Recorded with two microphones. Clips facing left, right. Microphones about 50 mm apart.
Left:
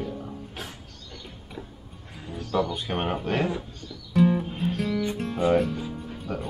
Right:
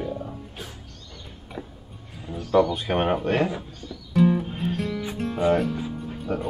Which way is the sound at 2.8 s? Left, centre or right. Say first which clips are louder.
Right 5 dB; centre.